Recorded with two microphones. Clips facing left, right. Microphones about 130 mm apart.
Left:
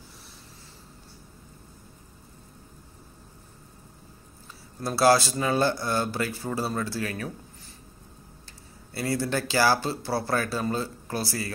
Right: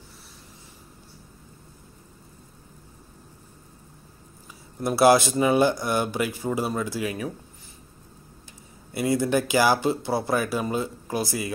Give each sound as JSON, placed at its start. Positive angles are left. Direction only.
{"t": 4.7, "sound": "speech", "side_deg": -20}
{"t": 8.9, "sound": "speech", "side_deg": -15}